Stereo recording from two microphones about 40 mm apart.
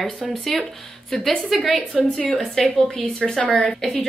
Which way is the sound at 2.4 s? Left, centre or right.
Centre.